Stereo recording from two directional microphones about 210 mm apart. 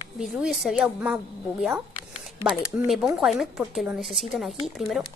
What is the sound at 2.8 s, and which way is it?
A woman's voice, centre (ahead or behind).